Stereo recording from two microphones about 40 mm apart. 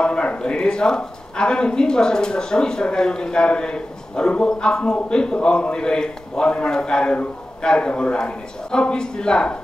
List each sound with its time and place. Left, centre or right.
0.0 s speech: left